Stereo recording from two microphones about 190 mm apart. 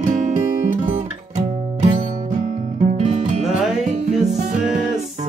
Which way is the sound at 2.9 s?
40° right (ahead or behind).